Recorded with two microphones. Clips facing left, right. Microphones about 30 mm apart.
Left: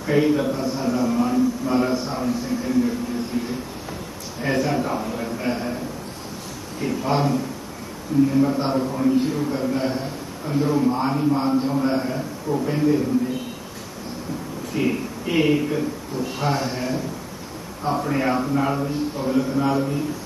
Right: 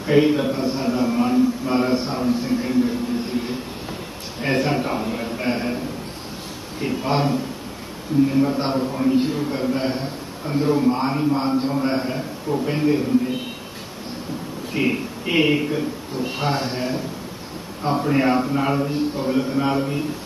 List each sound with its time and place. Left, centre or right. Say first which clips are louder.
0.0 s a man's voice: right 2 dB; right
6.8 s a man's voice: even; right
14.7 s speech: right 1 dB; right
18.0 s a man's voice: right 5 dB; right